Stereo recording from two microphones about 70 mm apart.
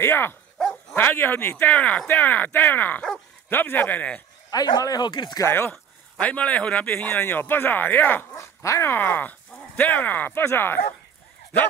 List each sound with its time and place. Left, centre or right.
0.0 s speech: left
4.5 s speech: left
5.5 s speech: left
6.1 s speech: centre
6.9 s speech: left
8.4 s speech: left
8.9 s speech: left